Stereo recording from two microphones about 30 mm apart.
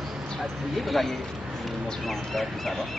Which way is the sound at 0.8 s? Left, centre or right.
Centre.